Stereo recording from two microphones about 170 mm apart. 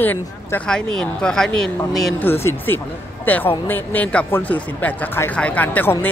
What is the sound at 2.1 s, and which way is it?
A man's voice, 15° left (ahead or behind).